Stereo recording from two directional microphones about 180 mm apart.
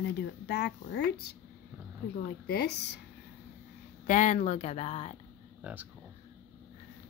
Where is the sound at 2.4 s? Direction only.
65° left (ahead or behind).